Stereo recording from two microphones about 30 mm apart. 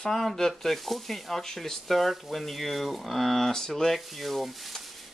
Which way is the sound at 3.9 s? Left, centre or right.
Centre.